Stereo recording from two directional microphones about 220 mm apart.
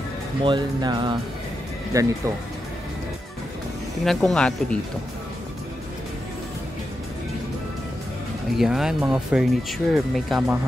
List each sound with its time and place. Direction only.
0.4 s speech: 20° right (ahead or behind)
4.0 s speech: centre (ahead or behind)
8.5 s speech: centre (ahead or behind)